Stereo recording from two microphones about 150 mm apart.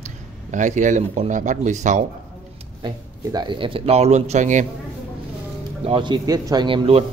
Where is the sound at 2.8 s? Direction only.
30° right (ahead or behind); by 4.6 s 55° right (ahead or behind).